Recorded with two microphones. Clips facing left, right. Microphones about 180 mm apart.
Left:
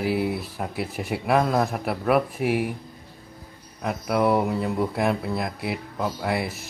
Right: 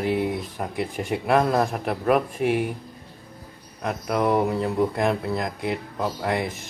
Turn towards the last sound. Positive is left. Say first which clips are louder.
# right 1 dB
turn(degrees=5)  # may be behind; listen again after turning